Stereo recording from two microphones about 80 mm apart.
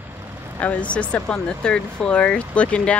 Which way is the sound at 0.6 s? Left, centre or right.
Centre.